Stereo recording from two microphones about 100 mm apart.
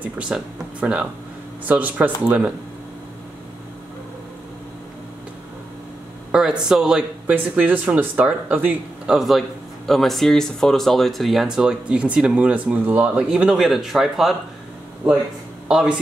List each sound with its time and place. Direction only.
0.0 s speech: 10° right (ahead or behind)
6.3 s speech: 5° right (ahead or behind)
9.1 s speech: centre (ahead or behind)